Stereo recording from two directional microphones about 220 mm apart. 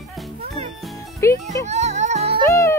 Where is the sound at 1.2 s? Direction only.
15° left (ahead or behind).